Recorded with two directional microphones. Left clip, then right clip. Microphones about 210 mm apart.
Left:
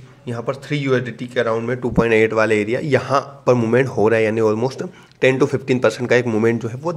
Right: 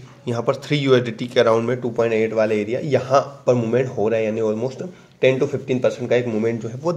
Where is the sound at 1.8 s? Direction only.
25° left (ahead or behind).